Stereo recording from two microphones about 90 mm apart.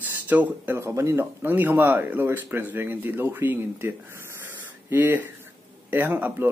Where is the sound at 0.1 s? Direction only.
20° right (ahead or behind).